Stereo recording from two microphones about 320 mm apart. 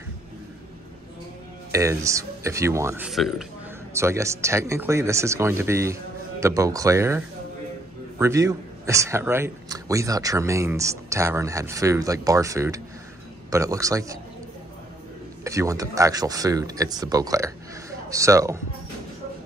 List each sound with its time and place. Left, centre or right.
1.7 s a man's voice: centre
15.4 s a man's voice: centre